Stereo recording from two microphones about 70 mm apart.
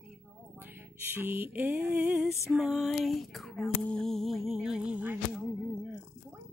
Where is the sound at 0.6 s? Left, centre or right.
Right.